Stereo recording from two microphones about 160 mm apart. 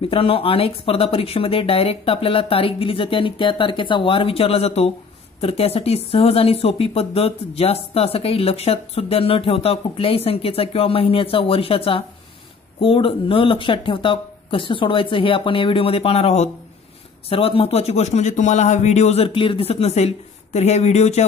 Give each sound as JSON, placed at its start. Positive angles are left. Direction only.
{"t": 0.0, "sound": "a man's voice", "side_deg": 35}